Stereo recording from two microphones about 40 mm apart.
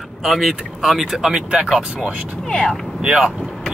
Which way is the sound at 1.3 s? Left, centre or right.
Right.